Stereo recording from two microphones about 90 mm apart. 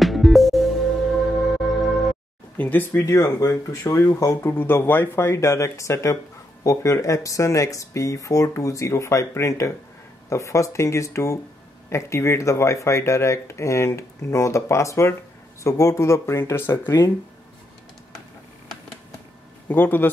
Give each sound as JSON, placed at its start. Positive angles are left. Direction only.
{"t": 0.0, "sound": "music", "side_deg": 0}
{"t": 2.5, "sound": "speech", "side_deg": 20}
{"t": 19.7, "sound": "speech", "side_deg": 20}